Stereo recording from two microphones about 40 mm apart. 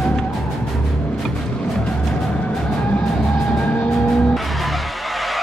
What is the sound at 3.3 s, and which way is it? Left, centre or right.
Music, centre.